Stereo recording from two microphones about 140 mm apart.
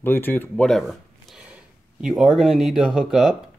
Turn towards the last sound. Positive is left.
turn(degrees=-5)  # may be behind; listen again after turning